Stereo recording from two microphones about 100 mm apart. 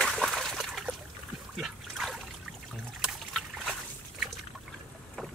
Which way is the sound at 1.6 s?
Centre (ahead or behind).